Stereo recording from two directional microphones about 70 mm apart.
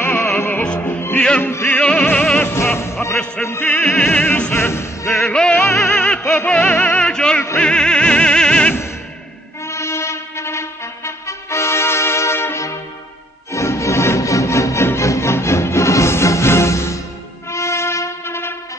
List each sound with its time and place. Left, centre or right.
0.0 s music: left
1.8 s music: centre
2.5 s music: left
3.4 s music: centre
4.6 s music: left
5.2 s music: centre
9.7 s music: left